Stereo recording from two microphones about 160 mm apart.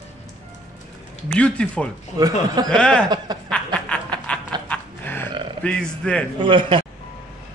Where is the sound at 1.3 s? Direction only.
5° left (ahead or behind).